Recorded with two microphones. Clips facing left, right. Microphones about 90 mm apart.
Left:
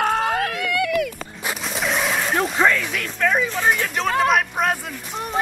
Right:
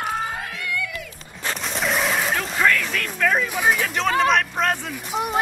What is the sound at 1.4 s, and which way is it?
Dog, 5° left (ahead or behind).